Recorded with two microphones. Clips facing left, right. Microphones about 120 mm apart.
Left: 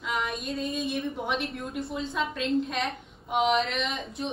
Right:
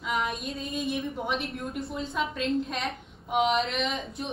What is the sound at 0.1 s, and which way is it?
A woman's voice, centre (ahead or behind).